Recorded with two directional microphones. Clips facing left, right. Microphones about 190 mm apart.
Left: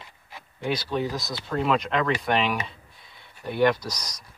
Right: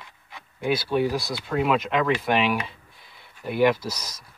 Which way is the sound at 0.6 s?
10° right (ahead or behind).